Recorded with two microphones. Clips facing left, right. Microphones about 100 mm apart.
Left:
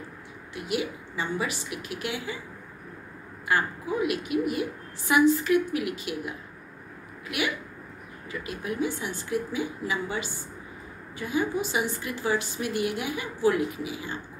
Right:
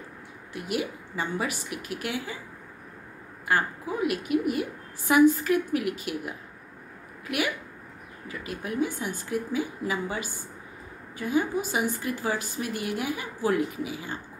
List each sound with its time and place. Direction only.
0.6 s a woman's voice: 45° right (ahead or behind)
3.4 s a woman's voice: 45° right (ahead or behind)
8.3 s a woman's voice: 45° right (ahead or behind)